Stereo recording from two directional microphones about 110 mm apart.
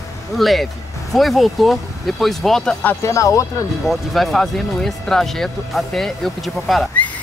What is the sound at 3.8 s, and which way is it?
Speech, centre (ahead or behind).